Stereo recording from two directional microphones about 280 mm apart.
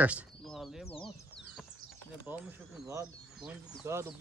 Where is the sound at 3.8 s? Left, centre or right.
Centre.